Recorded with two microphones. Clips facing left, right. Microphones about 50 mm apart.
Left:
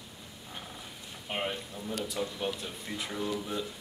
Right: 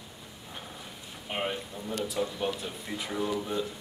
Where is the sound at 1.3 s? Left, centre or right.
Centre.